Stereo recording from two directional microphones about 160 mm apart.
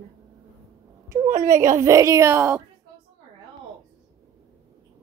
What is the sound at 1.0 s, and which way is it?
Speech, 20° right (ahead or behind).